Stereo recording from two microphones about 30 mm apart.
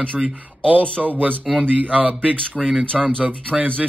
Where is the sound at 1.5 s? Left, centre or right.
Centre.